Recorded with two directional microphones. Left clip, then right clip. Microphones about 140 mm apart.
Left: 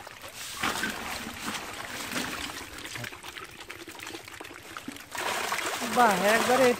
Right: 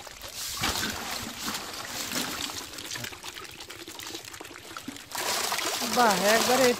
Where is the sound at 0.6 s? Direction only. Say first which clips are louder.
Even; centre (ahead or behind).